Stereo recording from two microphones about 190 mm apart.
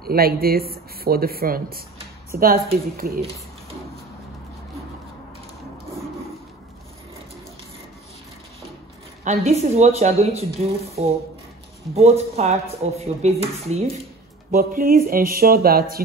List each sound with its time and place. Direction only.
0.0 s speech: 50° right (ahead or behind)
9.2 s speech: 35° right (ahead or behind)
11.9 s speech: 35° right (ahead or behind)
14.5 s speech: 50° right (ahead or behind)